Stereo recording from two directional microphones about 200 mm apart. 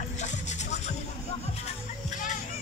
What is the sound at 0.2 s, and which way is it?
Music, 35° left (ahead or behind).